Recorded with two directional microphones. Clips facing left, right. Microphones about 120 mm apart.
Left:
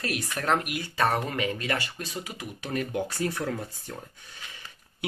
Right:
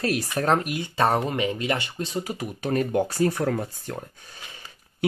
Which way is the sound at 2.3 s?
45° right (ahead or behind).